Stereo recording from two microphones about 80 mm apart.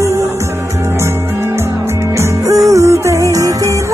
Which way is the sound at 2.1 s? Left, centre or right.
Right.